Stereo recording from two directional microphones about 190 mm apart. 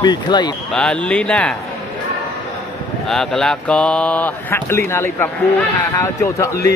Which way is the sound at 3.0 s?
Centre (ahead or behind).